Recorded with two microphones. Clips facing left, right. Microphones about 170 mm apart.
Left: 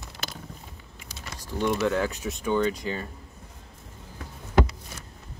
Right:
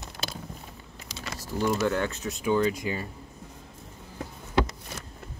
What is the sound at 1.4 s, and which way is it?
Speech, 5° right (ahead or behind).